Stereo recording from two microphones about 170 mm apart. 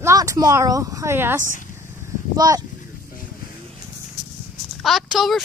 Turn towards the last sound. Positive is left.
turn(degrees=0)  # may be behind; listen again after turning